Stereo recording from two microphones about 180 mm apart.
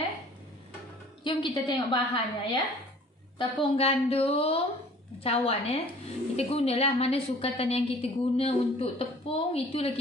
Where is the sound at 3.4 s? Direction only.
30° left (ahead or behind).